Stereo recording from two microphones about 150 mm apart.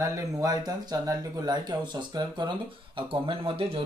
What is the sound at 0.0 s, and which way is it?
A man's voice, 20° right (ahead or behind).